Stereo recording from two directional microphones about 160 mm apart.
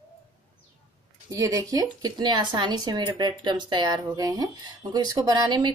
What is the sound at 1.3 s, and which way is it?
Speech, 20° right (ahead or behind).